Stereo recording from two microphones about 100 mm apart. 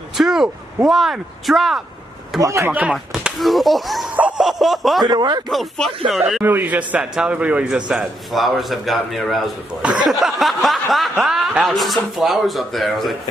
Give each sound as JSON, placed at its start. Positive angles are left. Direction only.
{"t": 0.2, "sound": "a sound", "side_deg": -5}
{"t": 0.8, "sound": "a man's voice", "side_deg": 0}
{"t": 2.4, "sound": "speech", "side_deg": -30}
{"t": 2.9, "sound": "a man's voice", "side_deg": -5}
{"t": 5.0, "sound": "speech", "side_deg": -45}
{"t": 5.5, "sound": "a man's voice", "side_deg": 0}
{"t": 6.4, "sound": "a man's voice", "side_deg": -20}
{"t": 10.1, "sound": "a man's voice", "side_deg": 0}